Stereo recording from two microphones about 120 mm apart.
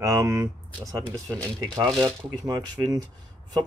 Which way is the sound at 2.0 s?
35° right (ahead or behind).